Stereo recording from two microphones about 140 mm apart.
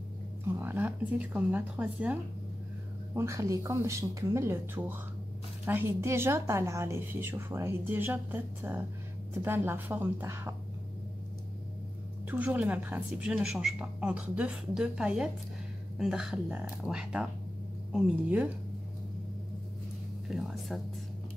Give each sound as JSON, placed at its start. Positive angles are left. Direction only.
{"t": 0.6, "sound": "a woman's voice", "side_deg": -15}
{"t": 3.2, "sound": "a woman's voice", "side_deg": -20}
{"t": 12.3, "sound": "a woman's voice", "side_deg": -10}
{"t": 20.2, "sound": "speech", "side_deg": 0}